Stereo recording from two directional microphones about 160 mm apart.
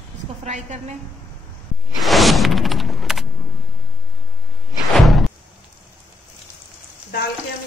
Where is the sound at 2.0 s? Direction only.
Centre (ahead or behind).